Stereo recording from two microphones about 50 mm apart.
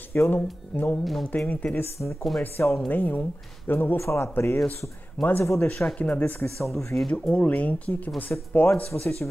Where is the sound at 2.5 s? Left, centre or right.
Left.